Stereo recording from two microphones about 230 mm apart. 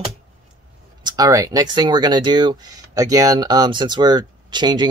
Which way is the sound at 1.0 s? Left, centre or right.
Centre.